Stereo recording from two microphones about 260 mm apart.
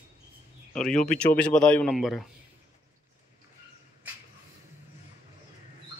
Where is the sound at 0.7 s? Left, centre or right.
Centre.